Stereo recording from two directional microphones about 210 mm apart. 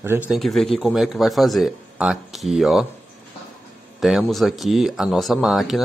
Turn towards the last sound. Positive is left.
turn(degrees=0)  # may be behind; listen again after turning